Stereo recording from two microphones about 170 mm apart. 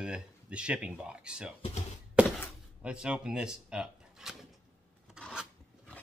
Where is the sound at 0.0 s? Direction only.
5° right (ahead or behind).